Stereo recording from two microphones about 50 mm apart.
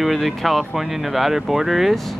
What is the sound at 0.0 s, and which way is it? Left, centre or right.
Speech, centre.